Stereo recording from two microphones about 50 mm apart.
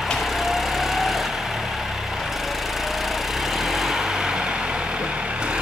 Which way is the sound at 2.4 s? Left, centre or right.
Centre.